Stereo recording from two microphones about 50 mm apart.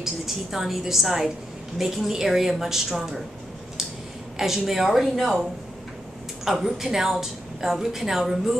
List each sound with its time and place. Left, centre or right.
0.0 s a woman's voice: centre
4.4 s a woman's voice: centre
6.4 s a woman's voice: centre